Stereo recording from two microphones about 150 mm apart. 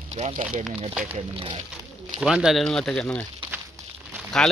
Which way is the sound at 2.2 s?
5° right (ahead or behind).